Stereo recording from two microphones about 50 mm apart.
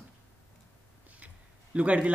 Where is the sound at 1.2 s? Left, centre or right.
Right.